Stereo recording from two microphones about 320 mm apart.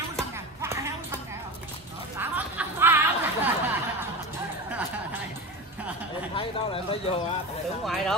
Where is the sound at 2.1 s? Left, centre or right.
Centre.